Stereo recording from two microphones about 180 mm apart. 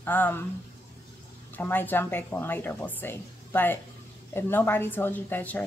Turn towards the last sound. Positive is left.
turn(degrees=10)  # may be behind; listen again after turning